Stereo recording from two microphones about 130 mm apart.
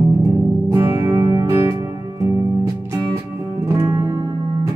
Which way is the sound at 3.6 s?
20° right (ahead or behind).